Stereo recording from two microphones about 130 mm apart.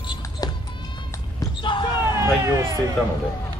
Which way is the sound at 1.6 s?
40° left (ahead or behind).